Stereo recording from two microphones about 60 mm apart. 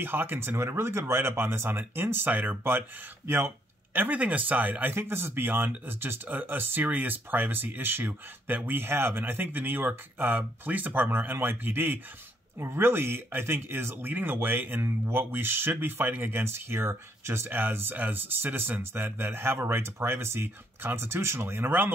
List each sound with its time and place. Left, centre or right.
0.0 s speech: right